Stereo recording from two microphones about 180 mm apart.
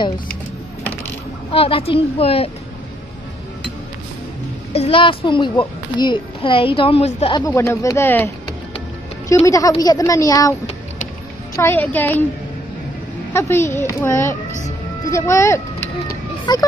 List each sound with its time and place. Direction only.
1.5 s a woman's voice: 30° left (ahead or behind)
4.7 s a child's voice: 30° left (ahead or behind)
7.3 s a woman's voice: 20° left (ahead or behind)
9.3 s a child's voice: 20° left (ahead or behind)
11.5 s a woman's voice: 10° left (ahead or behind)
13.3 s a woman's voice: 15° left (ahead or behind)